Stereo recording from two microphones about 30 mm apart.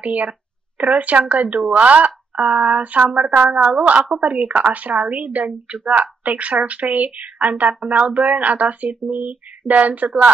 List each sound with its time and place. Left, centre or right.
0.0 s speech: right